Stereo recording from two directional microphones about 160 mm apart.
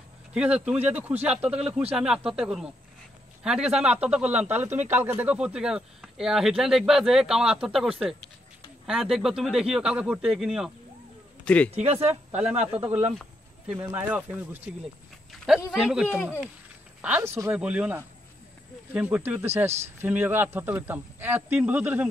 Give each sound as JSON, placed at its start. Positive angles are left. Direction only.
{"t": 0.3, "sound": "speech", "side_deg": -5}
{"t": 11.4, "sound": "a man's voice", "side_deg": 10}
{"t": 11.7, "sound": "speech", "side_deg": -40}
{"t": 13.7, "sound": "speech", "side_deg": -10}
{"t": 15.3, "sound": "a sound", "side_deg": 0}
{"t": 15.7, "sound": "speech", "side_deg": -5}
{"t": 17.0, "sound": "speech", "side_deg": -15}